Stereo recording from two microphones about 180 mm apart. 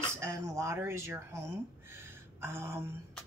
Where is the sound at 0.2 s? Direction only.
15° right (ahead or behind).